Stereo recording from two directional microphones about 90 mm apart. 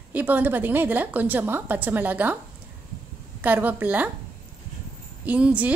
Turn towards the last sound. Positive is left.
turn(degrees=-15)  # may be behind; listen again after turning